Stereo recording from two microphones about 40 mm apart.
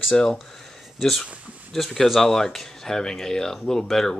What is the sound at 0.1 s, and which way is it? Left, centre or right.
Speech, centre.